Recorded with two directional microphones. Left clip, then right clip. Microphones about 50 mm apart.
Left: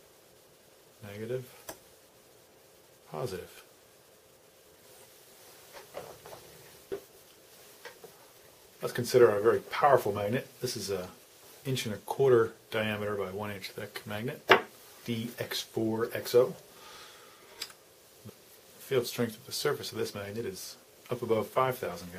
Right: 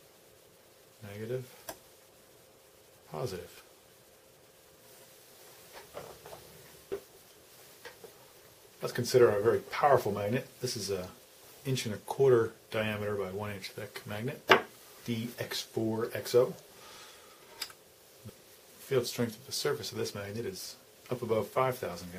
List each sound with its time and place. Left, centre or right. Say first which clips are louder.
1.0 s speech: left 1 dB; centre
3.1 s speech: left 1 dB; centre
5.8 s a sound: left 2 dB; centre
7.8 s stir: left 1 dB; centre
8.8 s speech: left 1 dB; centre
9.2 s speech: left 2 dB; centre
14.3 s speech: left 1 dB; centre
15.5 s speech: left 2 dB; left
18.9 s speech: left 1 dB; centre
19.1 s speech: left 1 dB; left